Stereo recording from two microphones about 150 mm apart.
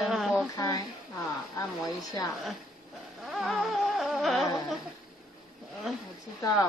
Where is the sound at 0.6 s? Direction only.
25° left (ahead or behind).